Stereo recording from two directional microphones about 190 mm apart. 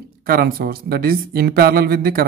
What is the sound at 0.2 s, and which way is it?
Speech, 50° right (ahead or behind).